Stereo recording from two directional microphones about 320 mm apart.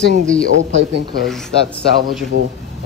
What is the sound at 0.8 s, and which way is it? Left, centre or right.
Speech, right.